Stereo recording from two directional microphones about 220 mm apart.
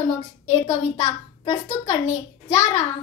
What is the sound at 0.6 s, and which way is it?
A child's voice, 25° left (ahead or behind).